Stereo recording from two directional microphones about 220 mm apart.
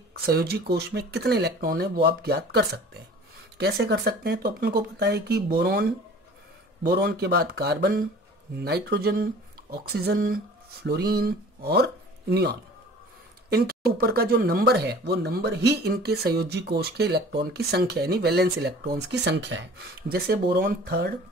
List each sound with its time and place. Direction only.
0.2 s speech: 45° right (ahead or behind)